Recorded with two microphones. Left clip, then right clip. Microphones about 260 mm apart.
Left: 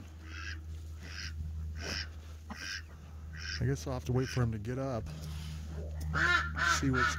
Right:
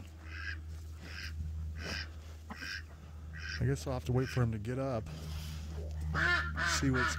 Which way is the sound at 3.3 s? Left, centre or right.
Left.